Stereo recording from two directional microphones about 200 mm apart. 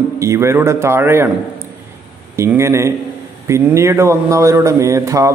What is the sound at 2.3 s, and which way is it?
A man's voice, 15° right (ahead or behind).